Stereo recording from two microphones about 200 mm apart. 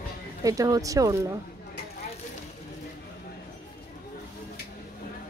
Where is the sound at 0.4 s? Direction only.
15° right (ahead or behind).